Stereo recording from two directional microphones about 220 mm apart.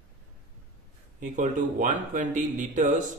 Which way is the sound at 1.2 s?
35° right (ahead or behind).